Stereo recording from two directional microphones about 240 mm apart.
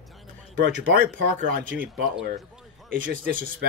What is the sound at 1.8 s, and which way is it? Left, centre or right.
Speech, centre.